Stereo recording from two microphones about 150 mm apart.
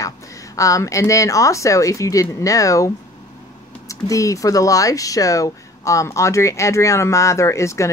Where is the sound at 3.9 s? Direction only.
20° left (ahead or behind).